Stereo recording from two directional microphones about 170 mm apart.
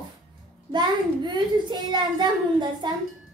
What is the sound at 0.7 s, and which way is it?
A woman's voice, 25° right (ahead or behind).